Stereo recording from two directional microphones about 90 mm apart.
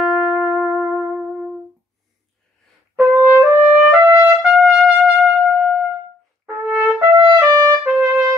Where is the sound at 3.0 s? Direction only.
20° right (ahead or behind).